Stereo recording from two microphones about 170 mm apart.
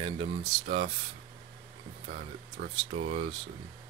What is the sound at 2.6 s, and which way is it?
Speech, 65° right (ahead or behind).